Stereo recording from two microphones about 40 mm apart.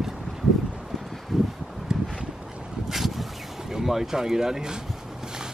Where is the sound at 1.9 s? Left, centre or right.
Right.